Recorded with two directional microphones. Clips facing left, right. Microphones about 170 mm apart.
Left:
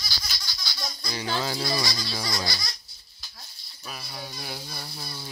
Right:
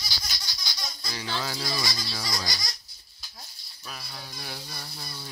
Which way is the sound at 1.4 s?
25° left (ahead or behind).